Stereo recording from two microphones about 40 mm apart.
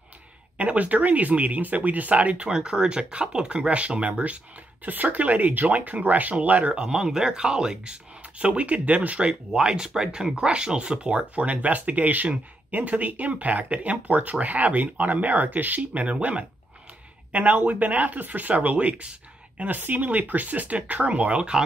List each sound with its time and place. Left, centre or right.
0.6 s speech: right
2.5 s speech: right
4.8 s speech: right
6.7 s speech: right
9.2 s speech: centre; by 18.5 s right
18.5 s speech: right
19.9 s speech: right